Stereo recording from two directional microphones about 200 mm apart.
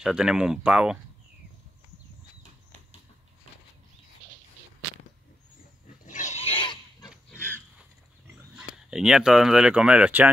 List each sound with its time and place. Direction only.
0.0 s speech: 5° right (ahead or behind)
6.0 s pig: 40° left (ahead or behind)
7.1 s pig: 5° left (ahead or behind)
8.5 s speech: 5° right (ahead or behind)